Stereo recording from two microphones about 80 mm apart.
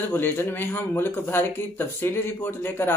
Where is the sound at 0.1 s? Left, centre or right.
Left.